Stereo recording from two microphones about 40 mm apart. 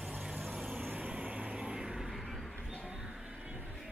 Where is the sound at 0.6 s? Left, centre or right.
Right.